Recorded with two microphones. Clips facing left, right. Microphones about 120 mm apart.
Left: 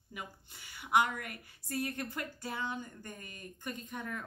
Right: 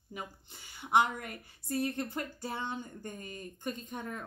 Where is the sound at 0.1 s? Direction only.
25° right (ahead or behind).